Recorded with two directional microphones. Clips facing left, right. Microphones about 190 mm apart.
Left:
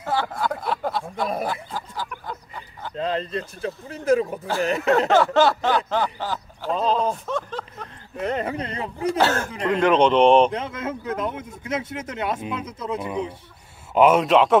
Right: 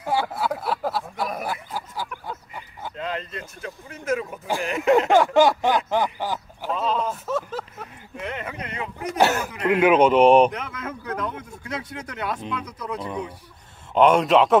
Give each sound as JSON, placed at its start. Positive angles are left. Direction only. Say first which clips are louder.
{"t": 0.0, "sound": "a sound", "louder": "even", "side_deg": -10}
{"t": 1.5, "sound": "snicker", "louder": "left 1 dB", "side_deg": -10}
{"t": 2.2, "sound": "a sound", "louder": "even", "side_deg": -10}
{"t": 3.0, "sound": "speech", "louder": "left 6 dB", "side_deg": 35}
{"t": 4.8, "sound": "snicker", "louder": "right 2 dB", "side_deg": -15}
{"t": 6.8, "sound": "speech", "louder": "left 3 dB", "side_deg": 35}
{"t": 7.2, "sound": "a sound", "louder": "right 1 dB", "side_deg": -5}
{"t": 8.2, "sound": "speech", "louder": "left 7 dB", "side_deg": 35}
{"t": 9.1, "sound": "snicker", "louder": "right 2 dB", "side_deg": -15}
{"t": 10.5, "sound": "speech", "louder": "left 4 dB", "side_deg": 25}
{"t": 13.9, "sound": "a man's voice", "louder": "even", "side_deg": 5}